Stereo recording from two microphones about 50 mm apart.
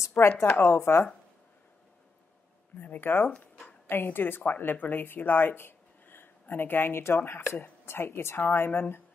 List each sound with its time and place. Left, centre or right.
0.2 s speech: left
0.6 s speech: left
3.0 s a woman's voice: left